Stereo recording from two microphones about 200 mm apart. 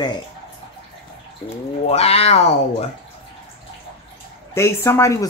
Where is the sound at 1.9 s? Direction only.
30° left (ahead or behind).